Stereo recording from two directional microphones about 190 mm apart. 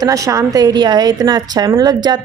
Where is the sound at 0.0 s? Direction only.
15° right (ahead or behind).